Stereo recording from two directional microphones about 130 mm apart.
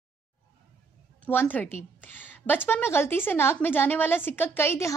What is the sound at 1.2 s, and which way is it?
A woman's voice, 15° left (ahead or behind).